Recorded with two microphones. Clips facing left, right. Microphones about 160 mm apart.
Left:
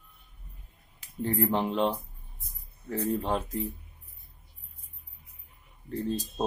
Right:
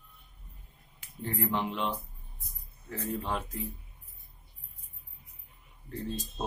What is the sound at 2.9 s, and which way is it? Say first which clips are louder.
Speech: left 5 dB; 35° left (ahead or behind).